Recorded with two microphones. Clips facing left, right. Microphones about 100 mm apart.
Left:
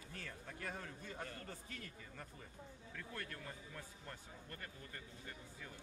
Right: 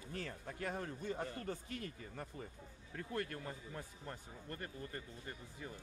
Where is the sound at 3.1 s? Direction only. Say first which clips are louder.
Right 8 dB; 30° right (ahead or behind).